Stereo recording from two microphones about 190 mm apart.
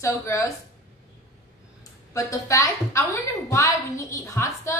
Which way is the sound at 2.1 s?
15° left (ahead or behind).